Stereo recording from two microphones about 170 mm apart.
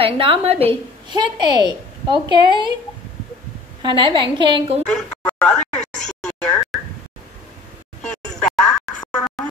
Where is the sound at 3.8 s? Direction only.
25° right (ahead or behind).